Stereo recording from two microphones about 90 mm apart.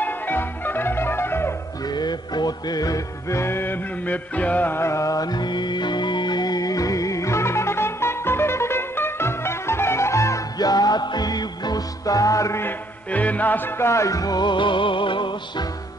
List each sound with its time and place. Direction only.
0.0 s music: 20° left (ahead or behind)
1.9 s music: 50° left (ahead or behind); by 12.6 s 35° left (ahead or behind)
12.6 s music: 15° left (ahead or behind); by 15.6 s 65° left (ahead or behind)